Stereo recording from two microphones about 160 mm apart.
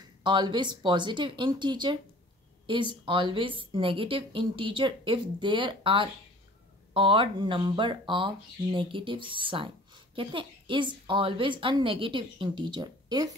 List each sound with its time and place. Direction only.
0.0 s a woman's voice: 30° right (ahead or behind)